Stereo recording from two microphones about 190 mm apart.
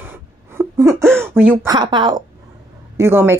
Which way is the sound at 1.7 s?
25° right (ahead or behind).